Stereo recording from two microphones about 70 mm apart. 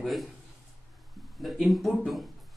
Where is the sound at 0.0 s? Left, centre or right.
Centre.